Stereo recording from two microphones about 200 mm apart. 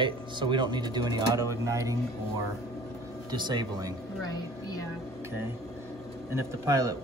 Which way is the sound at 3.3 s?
20° right (ahead or behind).